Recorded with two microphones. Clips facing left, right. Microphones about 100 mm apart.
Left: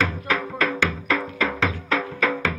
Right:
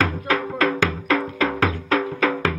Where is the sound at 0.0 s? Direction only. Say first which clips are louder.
Right 2 dB; 35° right (ahead or behind).